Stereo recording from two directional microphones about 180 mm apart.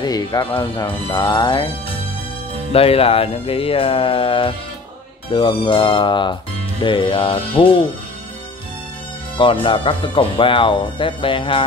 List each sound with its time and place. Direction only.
0.0 s speech: 25° left (ahead or behind)
9.4 s speech: 30° left (ahead or behind)